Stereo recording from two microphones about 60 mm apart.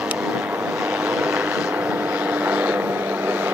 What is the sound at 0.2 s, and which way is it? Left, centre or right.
Vehicle, centre.